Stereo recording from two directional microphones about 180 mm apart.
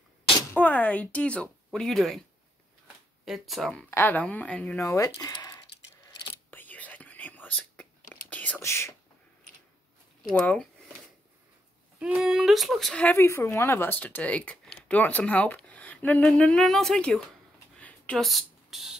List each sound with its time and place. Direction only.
0.6 s speech: 10° left (ahead or behind)
3.3 s speech: centre (ahead or behind)
4.8 s speech: 20° left (ahead or behind)
6.5 s whispering: 10° left (ahead or behind)
10.3 s speech: 5° left (ahead or behind)
12.0 s speech: 5° right (ahead or behind)
17.7 s a sound: 5° left (ahead or behind)